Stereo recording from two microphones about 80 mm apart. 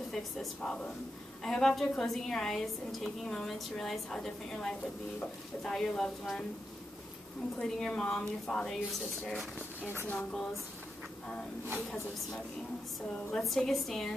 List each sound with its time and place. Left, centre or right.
0.1 s a woman's voice: centre
7.5 s speech: centre
9.8 s speech: left
13.4 s a woman's voice: centre